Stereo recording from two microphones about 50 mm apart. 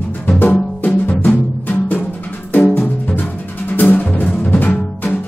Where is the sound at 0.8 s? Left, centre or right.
Left.